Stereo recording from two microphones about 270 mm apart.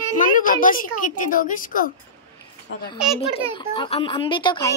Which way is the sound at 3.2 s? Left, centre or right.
Centre.